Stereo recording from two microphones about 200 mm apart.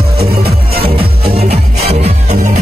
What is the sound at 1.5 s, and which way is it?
Music, 30° right (ahead or behind).